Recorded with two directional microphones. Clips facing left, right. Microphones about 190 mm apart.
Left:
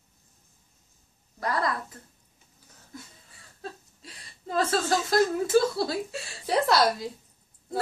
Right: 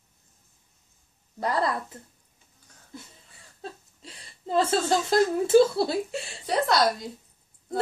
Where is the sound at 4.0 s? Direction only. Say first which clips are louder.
Right 2 dB; 30° right (ahead or behind).